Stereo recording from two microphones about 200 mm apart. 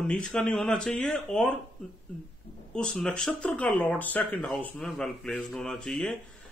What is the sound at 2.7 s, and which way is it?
Speech, 5° left (ahead or behind).